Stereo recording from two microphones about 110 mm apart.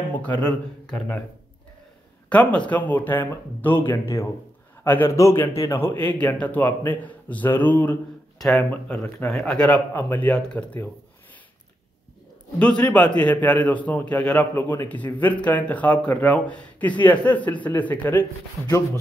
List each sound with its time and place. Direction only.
0.4 s a man's voice: 10° left (ahead or behind)
2.2 s a man's voice: 10° left (ahead or behind)
3.9 s a man's voice: 30° left (ahead or behind)
8.4 s a man's voice: 5° left (ahead or behind)
9.9 s a man's voice: 15° left (ahead or behind)
12.5 s a man's voice: 10° left (ahead or behind)